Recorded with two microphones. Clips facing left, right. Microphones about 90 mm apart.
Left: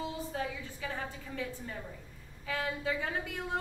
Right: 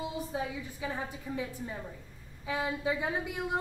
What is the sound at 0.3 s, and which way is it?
A woman's voice, 15° right (ahead or behind).